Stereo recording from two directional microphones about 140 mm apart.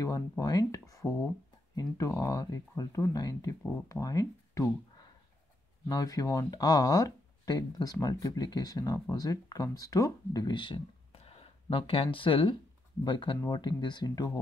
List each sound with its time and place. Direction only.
0.0 s speech: 25° left (ahead or behind)
5.9 s speech: 25° left (ahead or behind)